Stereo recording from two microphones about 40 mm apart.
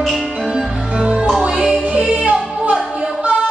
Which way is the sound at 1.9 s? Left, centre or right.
Right.